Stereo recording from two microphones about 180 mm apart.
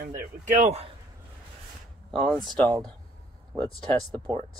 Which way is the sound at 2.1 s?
5° left (ahead or behind).